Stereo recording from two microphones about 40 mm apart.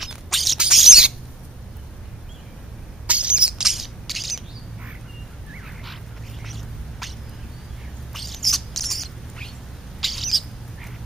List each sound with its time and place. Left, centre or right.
0.3 s bird: centre
0.7 s bird: centre
3.1 s a sound: right
3.6 s chirp: centre
6.4 s a sound: centre
8.1 s bird: centre